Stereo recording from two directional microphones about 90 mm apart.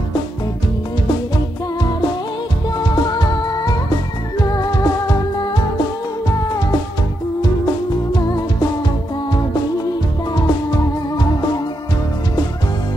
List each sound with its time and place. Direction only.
2.8 s music: 50° left (ahead or behind)
8.1 s music: 45° left (ahead or behind)